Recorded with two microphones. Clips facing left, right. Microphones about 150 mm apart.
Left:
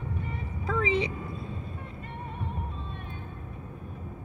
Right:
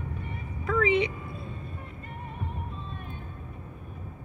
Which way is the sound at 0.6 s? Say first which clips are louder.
Right 3 dB; 30° left (ahead or behind).